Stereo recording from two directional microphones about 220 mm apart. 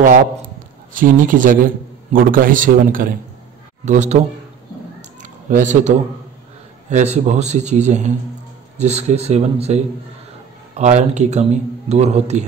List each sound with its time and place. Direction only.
0.9 s speech: 35° right (ahead or behind)
5.2 s a sound: 35° right (ahead or behind)
6.9 s speech: 30° right (ahead or behind)
10.8 s speech: 30° right (ahead or behind)